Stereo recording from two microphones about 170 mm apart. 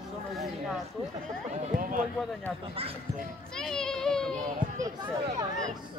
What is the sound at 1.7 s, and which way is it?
Speech, 50° right (ahead or behind).